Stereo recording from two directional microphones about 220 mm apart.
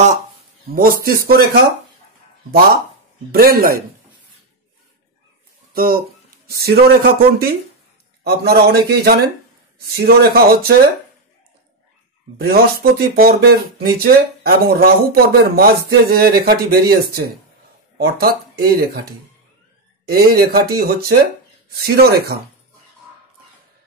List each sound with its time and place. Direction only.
0.7 s speech: 40° right (ahead or behind)
3.3 s speech: 45° right (ahead or behind)
5.7 s speech: 40° right (ahead or behind)
12.4 s speech: 45° right (ahead or behind)
20.1 s speech: 45° right (ahead or behind)